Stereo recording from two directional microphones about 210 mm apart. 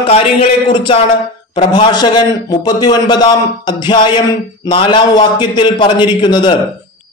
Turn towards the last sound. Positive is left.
turn(degrees=20)  # may be behind; listen again after turning